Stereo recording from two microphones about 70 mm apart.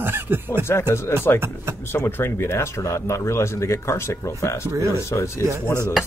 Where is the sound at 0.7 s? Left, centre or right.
Left.